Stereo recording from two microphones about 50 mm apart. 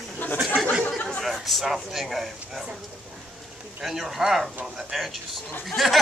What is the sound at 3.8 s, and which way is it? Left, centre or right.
Speech, centre.